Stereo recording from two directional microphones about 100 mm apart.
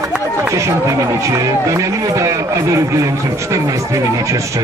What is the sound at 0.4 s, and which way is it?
Speech, 30° right (ahead or behind).